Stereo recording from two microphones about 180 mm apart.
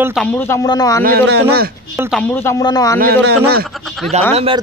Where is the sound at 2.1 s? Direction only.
10° left (ahead or behind).